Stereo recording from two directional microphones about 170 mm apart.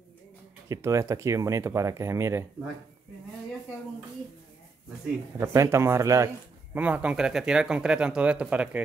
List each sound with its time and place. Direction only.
0.7 s speech: 15° right (ahead or behind)
5.4 s speech: 15° right (ahead or behind)